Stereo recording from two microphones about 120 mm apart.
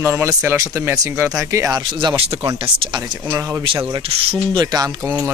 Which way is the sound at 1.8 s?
40° right (ahead or behind).